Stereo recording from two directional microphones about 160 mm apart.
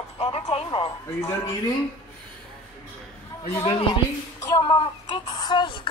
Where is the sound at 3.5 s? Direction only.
30° left (ahead or behind).